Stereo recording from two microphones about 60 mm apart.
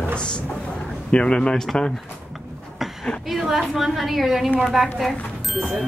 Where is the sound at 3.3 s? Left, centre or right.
Centre.